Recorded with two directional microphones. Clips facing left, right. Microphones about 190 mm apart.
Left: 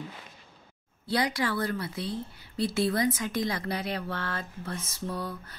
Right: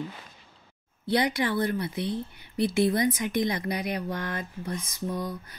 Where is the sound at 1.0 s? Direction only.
20° right (ahead or behind).